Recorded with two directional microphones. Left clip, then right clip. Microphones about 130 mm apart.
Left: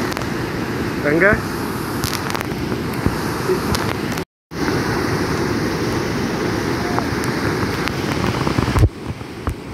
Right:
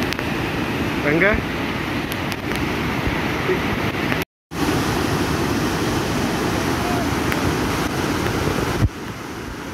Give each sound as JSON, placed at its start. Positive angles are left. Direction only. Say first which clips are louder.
{"t": 1.0, "sound": "speech", "louder": "left 3 dB", "side_deg": -35}